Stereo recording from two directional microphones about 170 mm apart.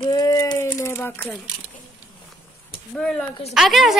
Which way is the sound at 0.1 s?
20° left (ahead or behind).